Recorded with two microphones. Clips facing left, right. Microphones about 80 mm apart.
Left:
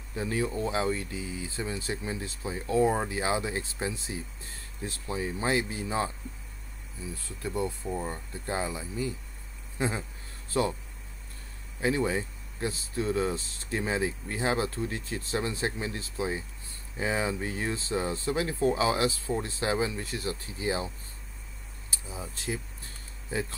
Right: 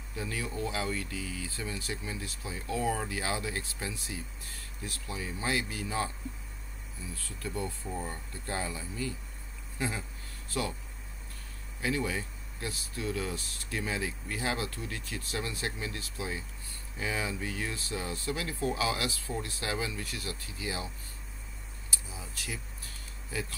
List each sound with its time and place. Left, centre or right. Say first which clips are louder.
0.1 s speech: left 7 dB; left
7.2 s speech: left 5 dB; left
11.8 s speech: left 5 dB; left
21.9 s a sound: left 4 dB; left